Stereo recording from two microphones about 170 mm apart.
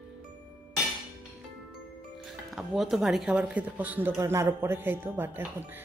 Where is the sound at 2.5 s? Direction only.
Centre (ahead or behind).